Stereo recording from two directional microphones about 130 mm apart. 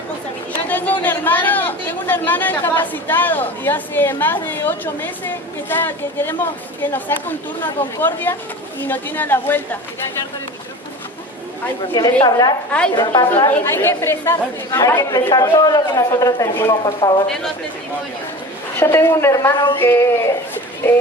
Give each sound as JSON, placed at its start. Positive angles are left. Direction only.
{"t": 0.7, "sound": "speech", "side_deg": 15}
{"t": 11.9, "sound": "a woman's voice", "side_deg": 30}
{"t": 13.5, "sound": "a woman's voice", "side_deg": 15}
{"t": 18.8, "sound": "speech", "side_deg": 20}
{"t": 19.5, "sound": "a woman's voice", "side_deg": 35}
{"t": 19.8, "sound": "speech", "side_deg": 20}